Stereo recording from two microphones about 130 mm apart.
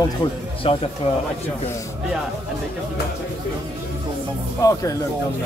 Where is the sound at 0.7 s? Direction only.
45° left (ahead or behind).